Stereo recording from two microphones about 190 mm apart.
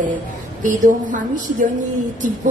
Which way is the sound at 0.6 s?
40° right (ahead or behind).